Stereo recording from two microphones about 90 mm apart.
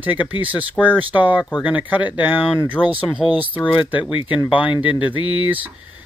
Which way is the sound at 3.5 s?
70° left (ahead or behind).